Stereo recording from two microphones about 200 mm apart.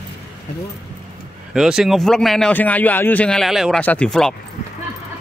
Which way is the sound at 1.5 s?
5° right (ahead or behind).